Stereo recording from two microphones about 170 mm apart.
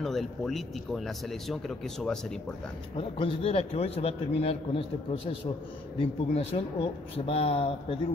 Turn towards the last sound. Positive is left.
turn(degrees=35)  # may be behind; listen again after turning